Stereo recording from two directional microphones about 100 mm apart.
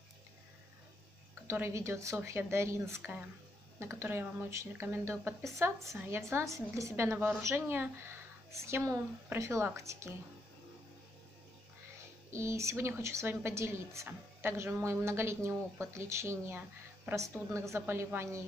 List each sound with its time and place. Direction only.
1.5 s a woman's voice: 30° right (ahead or behind)
12.3 s a woman's voice: 30° right (ahead or behind)